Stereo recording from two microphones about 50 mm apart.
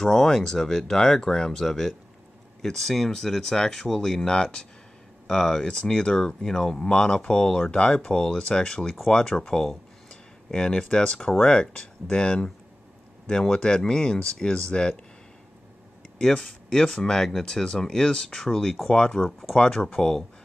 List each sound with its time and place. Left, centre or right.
0.0 s speech: centre
16.2 s speech: centre